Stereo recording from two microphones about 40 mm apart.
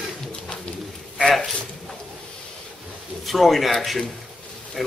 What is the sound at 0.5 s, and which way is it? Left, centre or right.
Pigeon, left.